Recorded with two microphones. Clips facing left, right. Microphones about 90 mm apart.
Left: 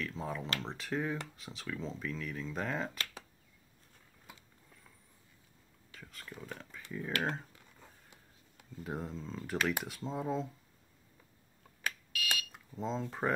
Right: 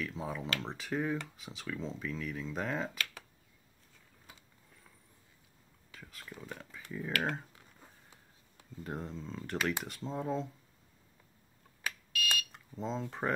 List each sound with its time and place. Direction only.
0.0 s speech: centre (ahead or behind)
5.9 s speech: centre (ahead or behind)
7.1 s speech: 30° left (ahead or behind)
8.8 s speech: centre (ahead or behind)
12.3 s smoke detector: 5° left (ahead or behind)
13.2 s speech: centre (ahead or behind)